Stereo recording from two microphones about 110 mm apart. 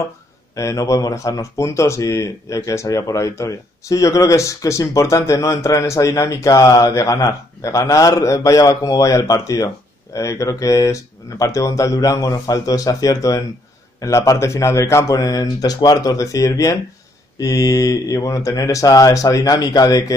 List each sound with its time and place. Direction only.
0.6 s speech: 30° left (ahead or behind)